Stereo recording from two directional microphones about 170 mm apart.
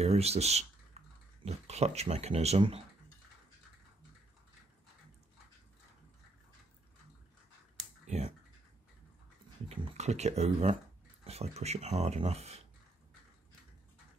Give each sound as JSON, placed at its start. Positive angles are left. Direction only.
{"t": 0.0, "sound": "speech", "side_deg": -40}
{"t": 1.0, "sound": "typing", "side_deg": -40}
{"t": 1.4, "sound": "speech", "side_deg": -40}
{"t": 9.7, "sound": "speech", "side_deg": -40}